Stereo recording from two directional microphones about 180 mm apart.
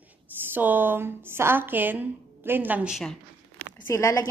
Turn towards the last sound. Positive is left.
turn(degrees=20)  # may be behind; listen again after turning